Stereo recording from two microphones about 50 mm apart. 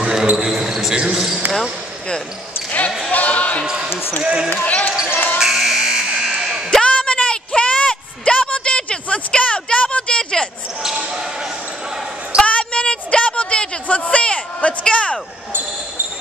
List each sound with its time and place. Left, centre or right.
0.0 s basketball bounce: centre
3.1 s basketball bounce: left
3.6 s speech: centre
3.9 s speech: left
4.2 s speech: centre
4.5 s speech: left
5.1 s buzzer: left
5.4 s fire alarm: centre
6.2 s a sound: centre
6.7 s a sound: centre
12.4 s a sound: left